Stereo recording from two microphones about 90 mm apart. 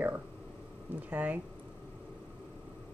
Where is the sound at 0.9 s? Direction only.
15° right (ahead or behind).